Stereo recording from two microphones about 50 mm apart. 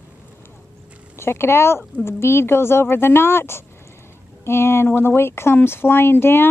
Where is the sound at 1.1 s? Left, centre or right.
Left.